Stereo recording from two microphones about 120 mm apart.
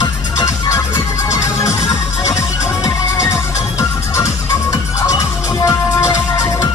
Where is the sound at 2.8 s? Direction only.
25° left (ahead or behind).